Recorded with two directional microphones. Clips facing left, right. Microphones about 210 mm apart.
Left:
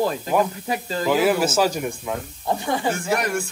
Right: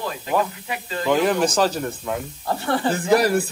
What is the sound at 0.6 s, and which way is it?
Speech, 35° left (ahead or behind).